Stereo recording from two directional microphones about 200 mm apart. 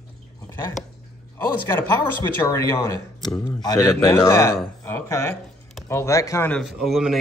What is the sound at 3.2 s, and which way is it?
Speech, 5° left (ahead or behind).